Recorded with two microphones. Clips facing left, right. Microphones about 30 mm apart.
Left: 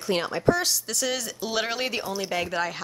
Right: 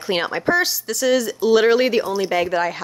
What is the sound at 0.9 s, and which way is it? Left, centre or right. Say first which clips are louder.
Speech: right 10 dB; centre.